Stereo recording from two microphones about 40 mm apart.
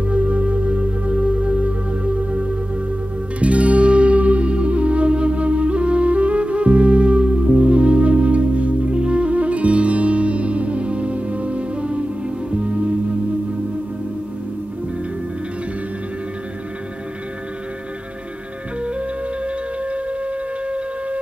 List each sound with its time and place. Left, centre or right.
0.0 s music: right
18.8 s flute: right